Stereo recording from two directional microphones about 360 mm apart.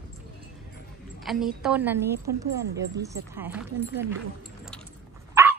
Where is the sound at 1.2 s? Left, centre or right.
Centre.